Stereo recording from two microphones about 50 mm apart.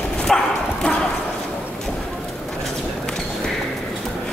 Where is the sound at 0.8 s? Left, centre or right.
Left.